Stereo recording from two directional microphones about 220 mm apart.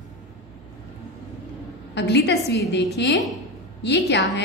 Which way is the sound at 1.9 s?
50° left (ahead or behind).